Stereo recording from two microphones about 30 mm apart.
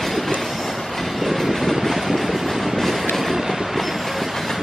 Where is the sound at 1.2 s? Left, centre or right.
Centre.